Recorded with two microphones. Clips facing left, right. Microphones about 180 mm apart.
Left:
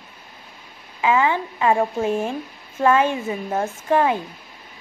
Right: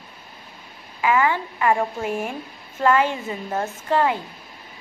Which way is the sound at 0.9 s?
20° left (ahead or behind).